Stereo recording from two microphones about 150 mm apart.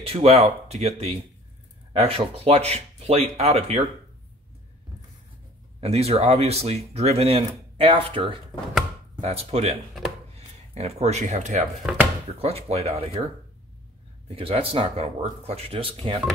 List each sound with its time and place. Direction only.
0.0 s speech: 40° right (ahead or behind)
5.8 s speech: 45° right (ahead or behind)
12.4 s speech: 40° right (ahead or behind)
14.3 s speech: 40° right (ahead or behind)